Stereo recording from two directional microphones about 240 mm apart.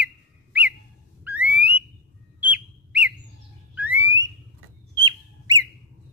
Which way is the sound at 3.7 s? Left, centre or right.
Centre.